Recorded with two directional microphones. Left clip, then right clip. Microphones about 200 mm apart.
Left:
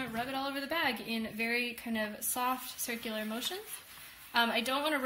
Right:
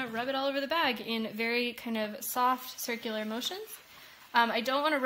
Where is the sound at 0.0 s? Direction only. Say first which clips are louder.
Right 4 dB; 35° right (ahead or behind).